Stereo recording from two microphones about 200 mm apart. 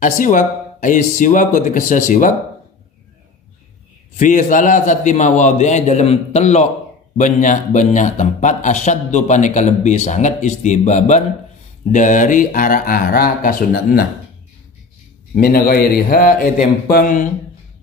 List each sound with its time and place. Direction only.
0.0 s a man's voice: 40° left (ahead or behind)
4.2 s a man's voice: 40° left (ahead or behind)
15.3 s a man's voice: 45° left (ahead or behind)